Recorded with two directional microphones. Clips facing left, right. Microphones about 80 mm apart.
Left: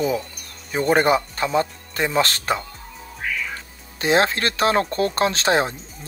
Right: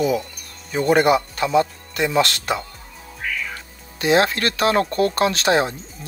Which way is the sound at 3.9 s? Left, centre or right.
Left.